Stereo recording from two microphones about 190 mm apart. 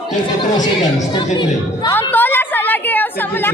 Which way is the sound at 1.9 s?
10° left (ahead or behind).